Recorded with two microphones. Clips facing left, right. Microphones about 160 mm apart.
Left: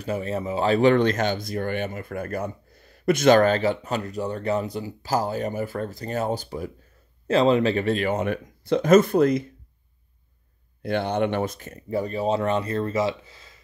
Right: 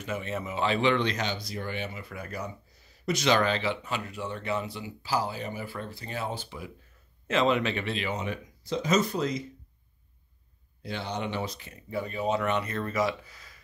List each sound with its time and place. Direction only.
0.0 s speech: 35° left (ahead or behind); by 9.5 s 55° left (ahead or behind)
10.8 s speech: 55° left (ahead or behind); by 13.6 s 25° left (ahead or behind)